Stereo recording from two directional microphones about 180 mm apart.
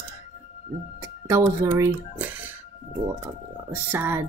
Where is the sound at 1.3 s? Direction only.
20° right (ahead or behind).